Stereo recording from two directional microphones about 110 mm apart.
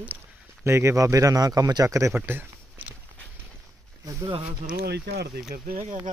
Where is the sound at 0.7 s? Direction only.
25° right (ahead or behind).